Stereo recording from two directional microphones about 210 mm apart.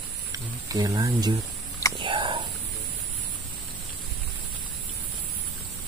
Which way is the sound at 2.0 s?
25° right (ahead or behind).